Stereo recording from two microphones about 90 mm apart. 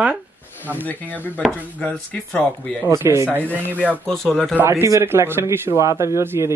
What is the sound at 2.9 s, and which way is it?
Speech, 35° right (ahead or behind).